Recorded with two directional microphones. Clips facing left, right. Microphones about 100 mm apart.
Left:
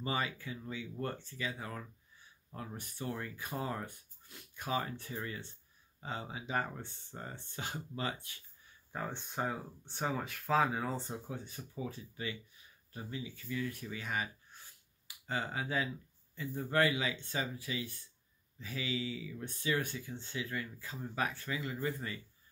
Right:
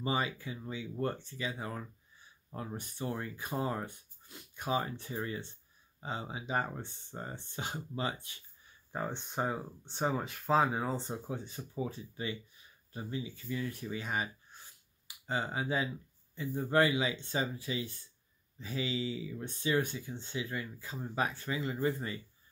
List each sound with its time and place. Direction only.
0.0 s speech: 20° right (ahead or behind)